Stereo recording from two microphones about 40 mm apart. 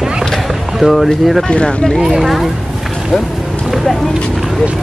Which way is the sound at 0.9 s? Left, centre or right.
Centre.